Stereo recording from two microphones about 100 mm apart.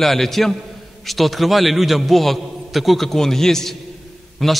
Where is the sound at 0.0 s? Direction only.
Centre (ahead or behind).